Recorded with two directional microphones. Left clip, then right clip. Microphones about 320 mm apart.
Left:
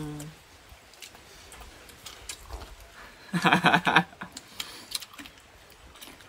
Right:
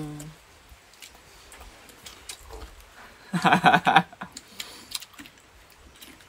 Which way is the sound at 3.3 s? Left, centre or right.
Centre.